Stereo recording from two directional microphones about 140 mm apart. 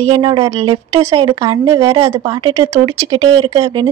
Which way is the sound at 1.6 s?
25° right (ahead or behind).